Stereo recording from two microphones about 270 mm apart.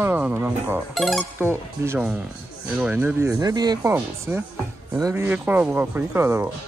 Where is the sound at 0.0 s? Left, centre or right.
Centre.